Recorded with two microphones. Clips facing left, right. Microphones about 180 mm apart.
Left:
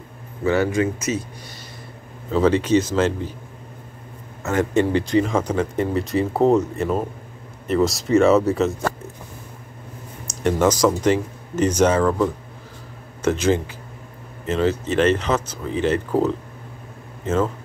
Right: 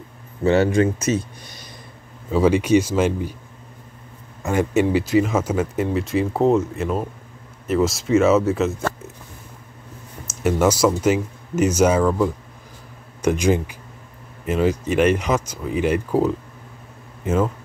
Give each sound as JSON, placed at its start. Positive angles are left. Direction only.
{"t": 0.4, "sound": "speech", "side_deg": -25}
{"t": 2.3, "sound": "speech", "side_deg": -10}
{"t": 4.4, "sound": "a man's voice", "side_deg": -10}
{"t": 10.2, "sound": "speech", "side_deg": -5}